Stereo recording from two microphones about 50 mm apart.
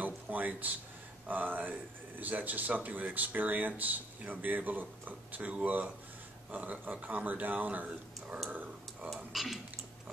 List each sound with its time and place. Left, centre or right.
0.0 s a sound: right
1.2 s speech: right
5.4 s speech: right
9.1 s speech: centre